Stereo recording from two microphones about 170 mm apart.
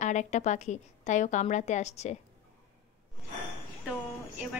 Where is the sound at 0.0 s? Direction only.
45° left (ahead or behind).